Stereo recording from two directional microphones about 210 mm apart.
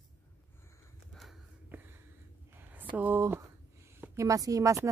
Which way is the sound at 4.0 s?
15° right (ahead or behind).